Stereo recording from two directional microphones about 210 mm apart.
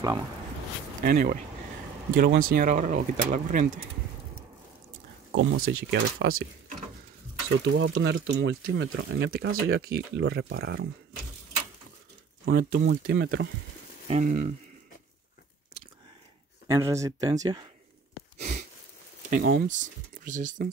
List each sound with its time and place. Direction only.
1.0 s speech: 45° right (ahead or behind)
5.3 s speech: 70° right (ahead or behind); by 6.3 s 50° right (ahead or behind)
7.6 s speech: 55° right (ahead or behind)
9.5 s speech: 80° right
10.1 s speech: 50° right (ahead or behind)
12.4 s speech: 45° right (ahead or behind)
14.0 s speech: 35° right (ahead or behind)
16.6 s speech: 15° right (ahead or behind)
18.4 s sniff: 35° right (ahead or behind)
19.3 s speech: 45° right (ahead or behind)